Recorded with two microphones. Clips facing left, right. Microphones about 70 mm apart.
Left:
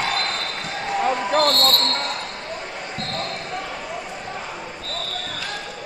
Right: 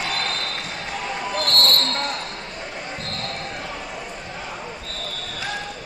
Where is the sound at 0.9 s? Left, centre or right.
Left.